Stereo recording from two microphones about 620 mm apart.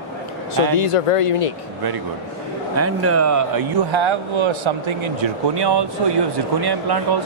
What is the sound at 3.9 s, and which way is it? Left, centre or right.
Speech, right.